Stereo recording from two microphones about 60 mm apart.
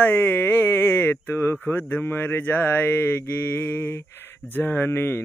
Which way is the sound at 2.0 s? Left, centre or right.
Left.